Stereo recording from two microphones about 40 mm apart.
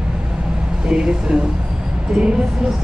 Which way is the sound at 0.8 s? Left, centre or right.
Right.